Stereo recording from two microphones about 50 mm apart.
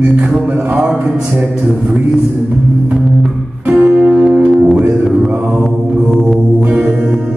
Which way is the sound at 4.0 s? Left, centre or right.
Centre.